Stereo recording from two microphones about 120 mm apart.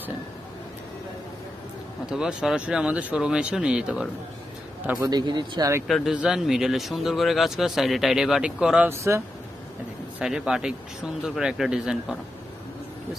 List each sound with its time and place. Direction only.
2.0 s speech: 5° right (ahead or behind)
5.0 s speech: 35° right (ahead or behind)
5.9 s speech: centre (ahead or behind)
8.9 s speech: 25° right (ahead or behind)
10.1 s speech: 5° right (ahead or behind)